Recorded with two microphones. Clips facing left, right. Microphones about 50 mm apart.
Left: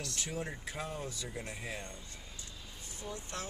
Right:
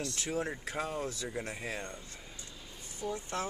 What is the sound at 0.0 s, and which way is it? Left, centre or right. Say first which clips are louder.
Speech: right 5 dB; right.